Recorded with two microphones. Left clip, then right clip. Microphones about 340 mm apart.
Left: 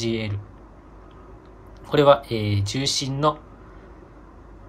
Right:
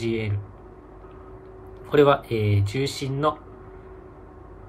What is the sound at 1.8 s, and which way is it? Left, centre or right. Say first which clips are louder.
Speech: left 2 dB; centre.